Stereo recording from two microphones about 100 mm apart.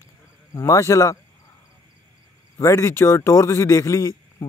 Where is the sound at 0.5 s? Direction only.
30° left (ahead or behind).